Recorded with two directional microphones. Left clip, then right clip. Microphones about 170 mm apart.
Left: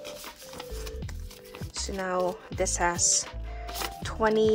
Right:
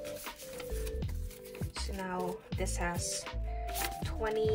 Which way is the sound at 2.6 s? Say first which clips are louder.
Left 12 dB; 40° left (ahead or behind).